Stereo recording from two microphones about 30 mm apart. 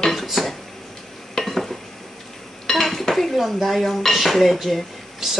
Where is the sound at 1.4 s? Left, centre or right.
Centre.